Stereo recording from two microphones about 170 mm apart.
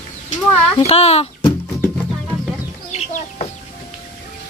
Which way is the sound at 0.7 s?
40° left (ahead or behind).